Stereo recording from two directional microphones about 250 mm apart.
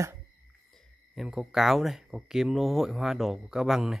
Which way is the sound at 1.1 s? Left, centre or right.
Centre.